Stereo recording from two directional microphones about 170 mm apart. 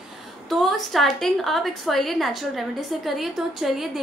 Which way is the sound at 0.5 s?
Centre (ahead or behind).